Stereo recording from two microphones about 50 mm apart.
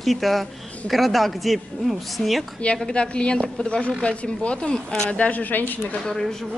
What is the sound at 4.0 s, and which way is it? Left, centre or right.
A woman's voice, left.